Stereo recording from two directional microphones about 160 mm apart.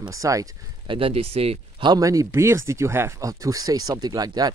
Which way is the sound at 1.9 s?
20° right (ahead or behind).